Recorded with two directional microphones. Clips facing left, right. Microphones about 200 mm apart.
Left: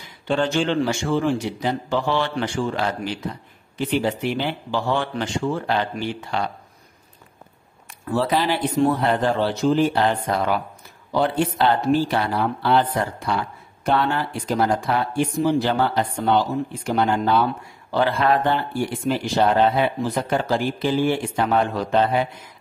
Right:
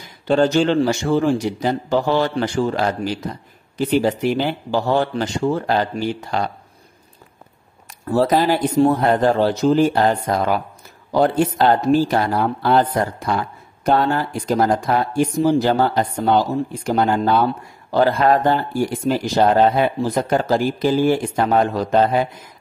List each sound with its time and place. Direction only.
0.3 s speech: 40° right (ahead or behind)
8.1 s speech: 40° right (ahead or behind)